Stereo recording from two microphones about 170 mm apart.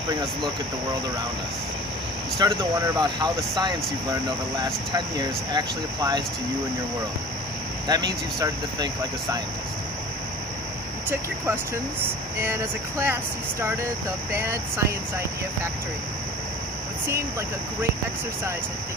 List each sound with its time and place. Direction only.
0.1 s speech: 25° right (ahead or behind)
2.3 s speech: 20° right (ahead or behind)
7.9 s speech: 25° right (ahead or behind)
12.4 s speech: 15° right (ahead or behind)